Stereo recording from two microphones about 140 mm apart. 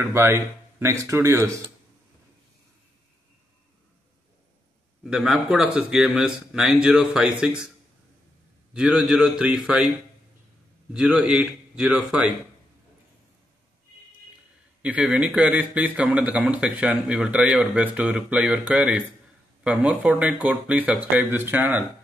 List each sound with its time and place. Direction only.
0.0 s speech: 15° right (ahead or behind)
5.0 s a man's voice: 5° right (ahead or behind)
8.7 s a man's voice: 5° right (ahead or behind)
10.9 s speech: 5° right (ahead or behind)
14.8 s a man's voice: 10° right (ahead or behind)